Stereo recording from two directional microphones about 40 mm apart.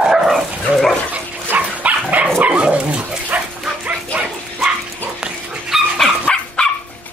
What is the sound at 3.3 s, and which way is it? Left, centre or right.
Bow-wow, right.